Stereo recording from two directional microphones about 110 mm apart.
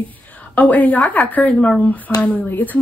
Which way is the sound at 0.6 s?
15° left (ahead or behind).